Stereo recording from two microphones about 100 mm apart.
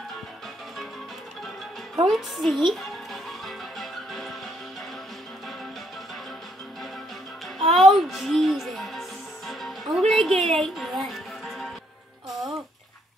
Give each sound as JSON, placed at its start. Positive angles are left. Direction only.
{"t": 2.0, "sound": "music", "side_deg": 0}
{"t": 7.6, "sound": "music", "side_deg": 0}
{"t": 12.3, "sound": "music", "side_deg": -35}